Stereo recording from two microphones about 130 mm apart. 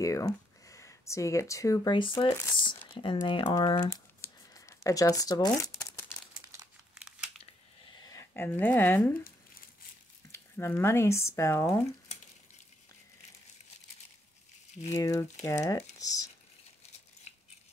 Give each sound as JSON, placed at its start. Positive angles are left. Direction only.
{"t": 0.0, "sound": "speech", "side_deg": 25}
{"t": 2.0, "sound": "speech", "side_deg": 40}
{"t": 3.9, "sound": "a sound", "side_deg": 20}
{"t": 5.6, "sound": "crumpling", "side_deg": 20}
{"t": 6.4, "sound": "crumpling", "side_deg": -20}
{"t": 7.0, "sound": "scissors", "side_deg": -5}
{"t": 8.0, "sound": "speech", "side_deg": 25}
{"t": 10.3, "sound": "speech", "side_deg": 20}
{"t": 15.0, "sound": "speech", "side_deg": 20}